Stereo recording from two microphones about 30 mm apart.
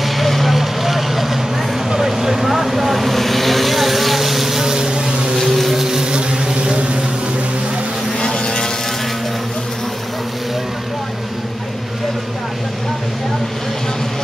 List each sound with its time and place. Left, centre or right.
0.0 s vehicle: centre
4.7 s boat: right
5.4 s vehicle: centre
5.7 s vehicle: centre
6.1 s vehicle: right
8.4 s vehicle: left